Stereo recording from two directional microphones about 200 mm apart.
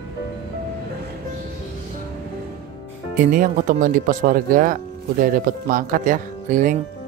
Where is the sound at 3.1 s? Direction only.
40° right (ahead or behind).